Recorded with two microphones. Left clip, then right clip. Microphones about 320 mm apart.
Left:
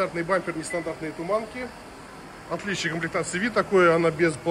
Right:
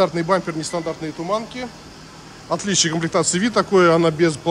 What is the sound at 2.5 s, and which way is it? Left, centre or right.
Speech, centre.